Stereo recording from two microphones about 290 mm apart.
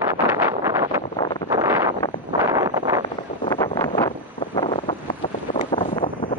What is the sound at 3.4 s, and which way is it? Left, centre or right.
Wind, centre.